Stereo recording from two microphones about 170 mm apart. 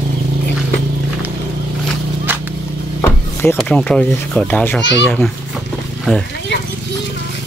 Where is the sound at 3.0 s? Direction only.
15° left (ahead or behind).